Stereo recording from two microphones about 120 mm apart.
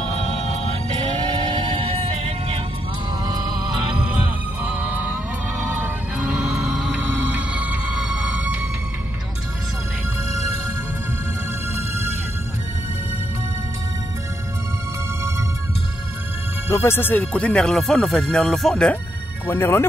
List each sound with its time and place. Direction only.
0.3 s music: 65° right (ahead or behind)
1.5 s music: 50° right (ahead or behind)
4.6 s music: 15° right (ahead or behind)
6.6 s music: 5° right (ahead or behind)
11.7 s music: 20° right (ahead or behind)
16.7 s speech: 20° left (ahead or behind); by 18.9 s 5° left (ahead or behind)
19.4 s speech: 15° left (ahead or behind)